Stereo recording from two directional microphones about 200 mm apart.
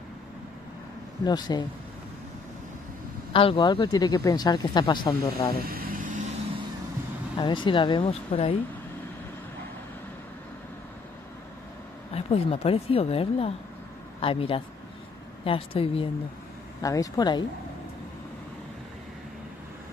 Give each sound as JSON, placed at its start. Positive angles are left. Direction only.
{"t": 1.2, "sound": "speech", "side_deg": 20}
{"t": 3.3, "sound": "speech", "side_deg": 25}
{"t": 5.7, "sound": "vehicle", "side_deg": -45}
{"t": 7.3, "sound": "speech", "side_deg": 25}
{"t": 12.1, "sound": "speech", "side_deg": 30}
{"t": 16.8, "sound": "speech", "side_deg": 15}